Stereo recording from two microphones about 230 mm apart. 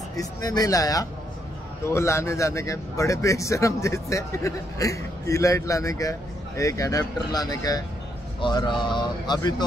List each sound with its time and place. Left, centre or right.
0.1 s a man's voice: centre